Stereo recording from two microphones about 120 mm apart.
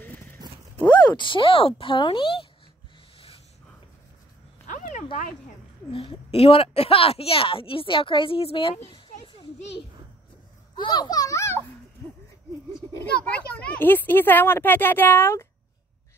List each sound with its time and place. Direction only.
0.4 s horse: 30° right (ahead or behind)
1.0 s a woman's voice: 40° left (ahead or behind)
4.6 s a sound: 90° left
5.9 s a woman's voice: 50° left (ahead or behind)
8.9 s children playing: 40° left (ahead or behind)
10.8 s a child's voice: 40° left (ahead or behind); by 11.6 s 25° left (ahead or behind)
13.0 s speech: 10° left (ahead or behind)